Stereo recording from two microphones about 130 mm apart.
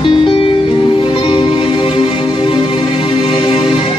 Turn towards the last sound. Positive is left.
turn(degrees=40)  # may be behind; listen again after turning